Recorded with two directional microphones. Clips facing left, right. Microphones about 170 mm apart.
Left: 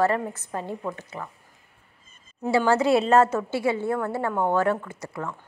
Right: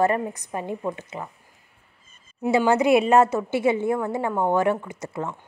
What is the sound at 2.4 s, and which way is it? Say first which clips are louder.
A woman's voice: right 2 dB; 20° right (ahead or behind).